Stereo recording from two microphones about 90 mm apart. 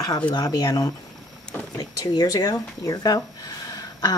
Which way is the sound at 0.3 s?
45° left (ahead or behind).